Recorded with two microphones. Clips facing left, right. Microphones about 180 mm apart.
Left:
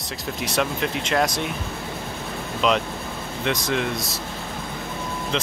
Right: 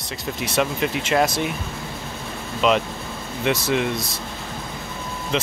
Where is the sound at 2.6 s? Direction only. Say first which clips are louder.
Right 2 dB; centre (ahead or behind).